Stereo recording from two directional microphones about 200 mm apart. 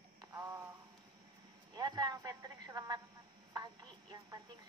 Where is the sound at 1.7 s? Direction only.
20° right (ahead or behind).